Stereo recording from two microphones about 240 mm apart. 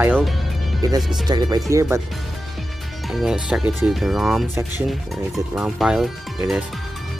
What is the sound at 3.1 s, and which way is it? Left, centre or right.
Speech, centre.